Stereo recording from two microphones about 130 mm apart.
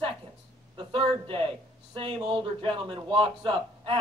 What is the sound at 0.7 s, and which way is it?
A man's voice, 40° right (ahead or behind).